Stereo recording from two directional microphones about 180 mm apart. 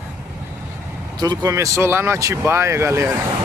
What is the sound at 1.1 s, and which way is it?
Speech, 20° right (ahead or behind).